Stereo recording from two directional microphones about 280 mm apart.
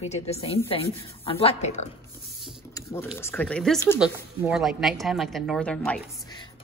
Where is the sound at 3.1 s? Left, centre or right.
Centre.